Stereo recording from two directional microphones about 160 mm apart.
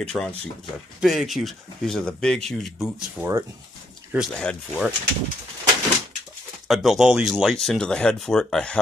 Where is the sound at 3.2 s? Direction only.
15° right (ahead or behind).